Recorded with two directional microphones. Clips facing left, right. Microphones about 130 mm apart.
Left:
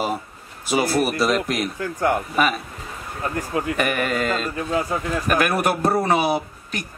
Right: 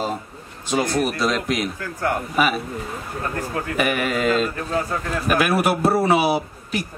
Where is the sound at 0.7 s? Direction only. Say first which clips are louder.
Left 1 dB; 5° left (ahead or behind).